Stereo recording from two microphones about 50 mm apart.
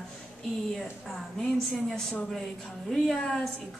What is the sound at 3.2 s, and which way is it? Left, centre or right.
Speech, centre.